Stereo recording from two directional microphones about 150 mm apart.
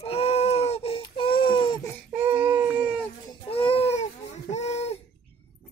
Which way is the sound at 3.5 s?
40° left (ahead or behind).